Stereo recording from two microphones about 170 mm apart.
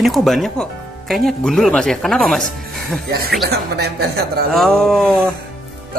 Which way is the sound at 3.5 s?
75° right (ahead or behind).